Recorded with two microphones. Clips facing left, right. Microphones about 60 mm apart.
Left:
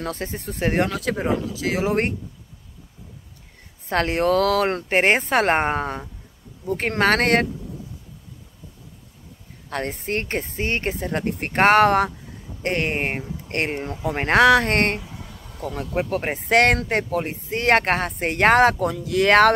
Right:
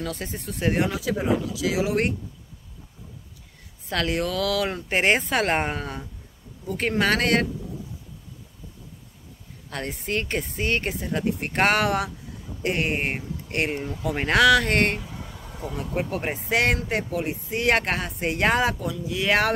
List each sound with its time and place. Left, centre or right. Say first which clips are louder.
0.0 s speech: left 3 dB; left
0.8 s speech: left 1 dB; left
3.9 s speech: left 6 dB; left
9.7 s speech: left 3 dB; left
15.0 s a sound: even; centre
16.1 s speech: left 4 dB; left
16.3 s speech: left 6 dB; left